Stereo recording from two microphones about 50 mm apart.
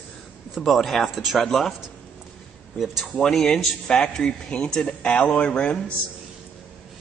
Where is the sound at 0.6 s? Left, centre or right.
Centre.